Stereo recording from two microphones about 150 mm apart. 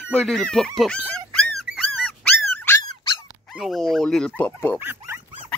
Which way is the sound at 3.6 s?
Centre (ahead or behind).